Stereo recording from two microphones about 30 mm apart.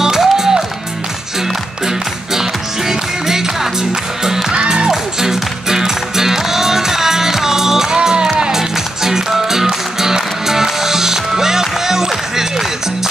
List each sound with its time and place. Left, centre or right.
0.0 s music: centre
2.9 s music: centre
4.5 s music: right
5.3 s music: centre
7.9 s music: right
8.5 s music: centre